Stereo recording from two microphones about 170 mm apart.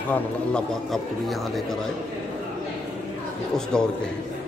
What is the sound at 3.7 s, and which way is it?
Speech, 5° left (ahead or behind).